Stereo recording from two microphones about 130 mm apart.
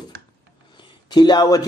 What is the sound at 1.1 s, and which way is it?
Speech, 35° left (ahead or behind).